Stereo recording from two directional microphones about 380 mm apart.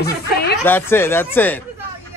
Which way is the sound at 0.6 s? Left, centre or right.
Centre.